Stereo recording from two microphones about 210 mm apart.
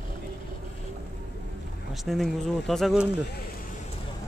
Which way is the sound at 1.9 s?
Centre (ahead or behind).